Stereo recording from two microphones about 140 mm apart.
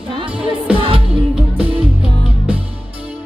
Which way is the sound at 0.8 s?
40° right (ahead or behind).